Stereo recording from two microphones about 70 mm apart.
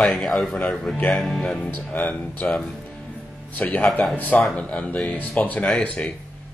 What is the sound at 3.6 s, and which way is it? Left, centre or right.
Speech, left.